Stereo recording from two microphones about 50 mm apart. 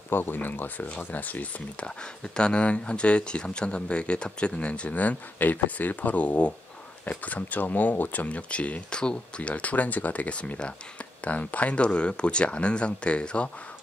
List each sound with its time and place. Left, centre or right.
0.1 s speech: left
1.9 s speech: centre